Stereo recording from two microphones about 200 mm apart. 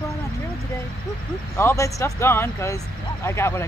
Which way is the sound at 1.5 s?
15° left (ahead or behind).